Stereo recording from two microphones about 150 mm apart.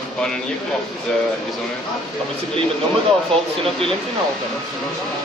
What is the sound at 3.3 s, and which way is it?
Speech, 5° left (ahead or behind).